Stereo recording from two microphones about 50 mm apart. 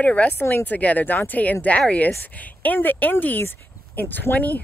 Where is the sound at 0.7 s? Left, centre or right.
Left.